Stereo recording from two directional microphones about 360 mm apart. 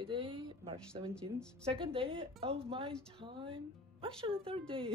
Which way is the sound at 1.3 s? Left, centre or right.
Centre.